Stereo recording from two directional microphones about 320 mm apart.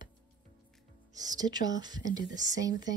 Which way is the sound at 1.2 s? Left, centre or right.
Centre.